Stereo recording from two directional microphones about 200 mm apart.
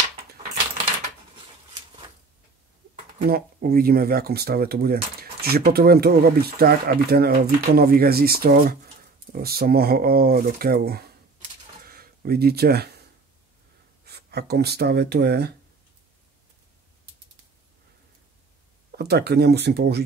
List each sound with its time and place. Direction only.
3.3 s speech: 50° right (ahead or behind)
11.8 s a sound: 50° right (ahead or behind)
14.0 s speech: 55° right (ahead or behind)
18.9 s speech: 50° right (ahead or behind)